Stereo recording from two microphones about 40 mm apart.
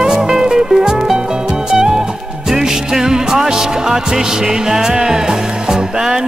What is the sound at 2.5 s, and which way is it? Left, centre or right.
Music, centre.